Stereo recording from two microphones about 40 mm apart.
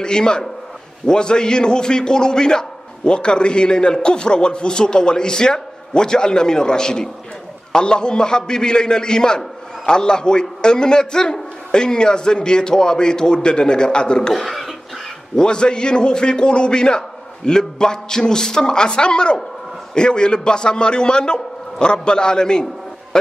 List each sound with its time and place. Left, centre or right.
0.0 s a man's voice: centre
14.3 s speech: centre
15.3 s a man's voice: left